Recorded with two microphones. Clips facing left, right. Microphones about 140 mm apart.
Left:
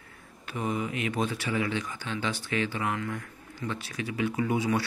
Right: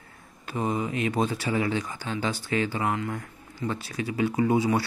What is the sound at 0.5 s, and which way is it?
Speech, 35° right (ahead or behind).